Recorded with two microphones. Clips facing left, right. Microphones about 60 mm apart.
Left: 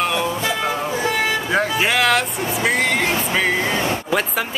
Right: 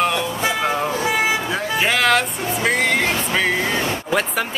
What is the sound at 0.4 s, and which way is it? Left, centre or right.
Vehicle, centre.